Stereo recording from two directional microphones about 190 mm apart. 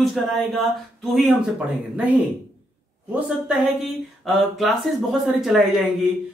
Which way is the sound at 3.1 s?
5° right (ahead or behind).